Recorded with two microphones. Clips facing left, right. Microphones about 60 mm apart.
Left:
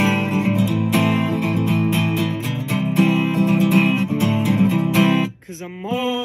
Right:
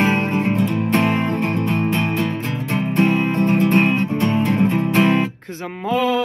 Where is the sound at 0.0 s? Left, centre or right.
Right.